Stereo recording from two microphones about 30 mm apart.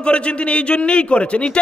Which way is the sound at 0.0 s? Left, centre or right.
Left.